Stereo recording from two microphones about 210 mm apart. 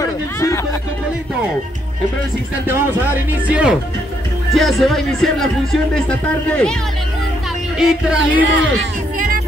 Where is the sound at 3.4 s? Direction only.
5° right (ahead or behind).